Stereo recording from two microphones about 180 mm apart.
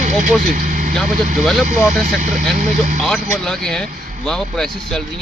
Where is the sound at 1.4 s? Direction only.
Centre (ahead or behind).